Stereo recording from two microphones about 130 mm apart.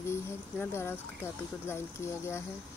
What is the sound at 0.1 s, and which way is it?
Speech, 20° left (ahead or behind).